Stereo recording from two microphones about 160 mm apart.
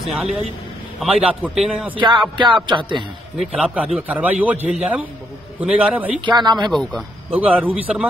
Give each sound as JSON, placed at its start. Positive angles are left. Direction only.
{"t": 0.0, "sound": "a man's voice", "side_deg": 0}
{"t": 2.0, "sound": "music", "side_deg": -30}
{"t": 3.3, "sound": "a man's voice", "side_deg": -5}
{"t": 6.2, "sound": "music", "side_deg": -25}
{"t": 6.7, "sound": "a man's voice", "side_deg": 0}
{"t": 7.3, "sound": "a man's voice", "side_deg": -10}